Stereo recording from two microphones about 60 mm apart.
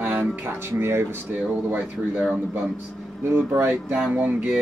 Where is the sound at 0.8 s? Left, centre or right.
Right.